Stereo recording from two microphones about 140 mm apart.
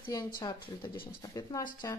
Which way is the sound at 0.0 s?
25° left (ahead or behind).